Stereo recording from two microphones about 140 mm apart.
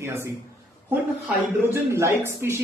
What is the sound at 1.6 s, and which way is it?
Speech, 15° right (ahead or behind).